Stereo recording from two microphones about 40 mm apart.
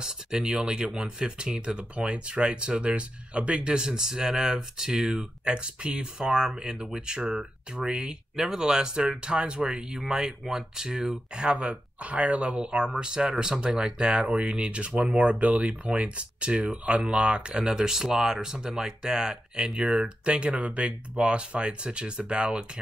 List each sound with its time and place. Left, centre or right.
0.0 s speech: centre
15.4 s speech: right
19.8 s speech: centre
20.2 s speech: right